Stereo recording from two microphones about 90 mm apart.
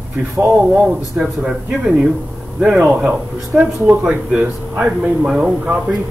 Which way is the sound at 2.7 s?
20° right (ahead or behind).